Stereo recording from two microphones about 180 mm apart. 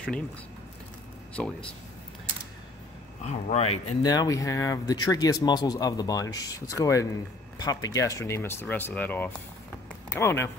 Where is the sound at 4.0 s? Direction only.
20° left (ahead or behind).